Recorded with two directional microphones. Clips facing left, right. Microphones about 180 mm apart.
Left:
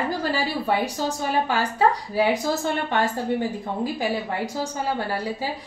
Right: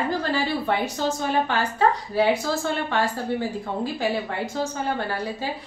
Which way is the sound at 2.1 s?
20° left (ahead or behind).